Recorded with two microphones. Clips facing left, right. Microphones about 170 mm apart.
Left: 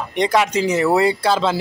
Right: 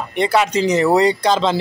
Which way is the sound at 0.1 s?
15° left (ahead or behind).